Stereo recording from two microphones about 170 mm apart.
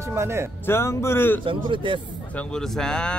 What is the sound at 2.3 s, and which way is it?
Speech, 5° left (ahead or behind).